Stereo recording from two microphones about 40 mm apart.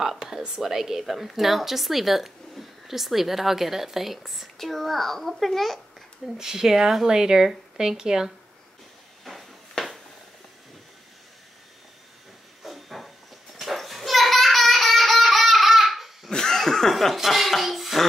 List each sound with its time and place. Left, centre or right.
0.0 s a woman's voice: centre
6.2 s speech: centre
9.2 s a sound: centre
12.6 s a sound: centre
16.3 s chuckle: centre
16.9 s chuckle: centre